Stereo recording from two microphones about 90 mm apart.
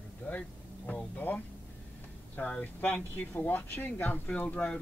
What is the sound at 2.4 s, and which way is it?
Speech, 15° left (ahead or behind).